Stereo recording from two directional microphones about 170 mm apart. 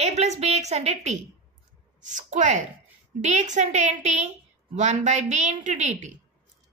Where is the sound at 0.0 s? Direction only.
40° right (ahead or behind).